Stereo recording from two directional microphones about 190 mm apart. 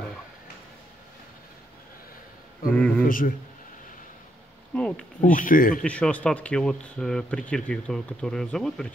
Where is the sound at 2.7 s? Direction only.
5° left (ahead or behind).